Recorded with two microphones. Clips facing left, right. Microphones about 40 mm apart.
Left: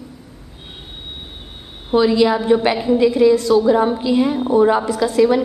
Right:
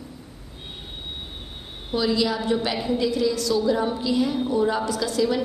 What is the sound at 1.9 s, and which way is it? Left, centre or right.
A woman's voice, left.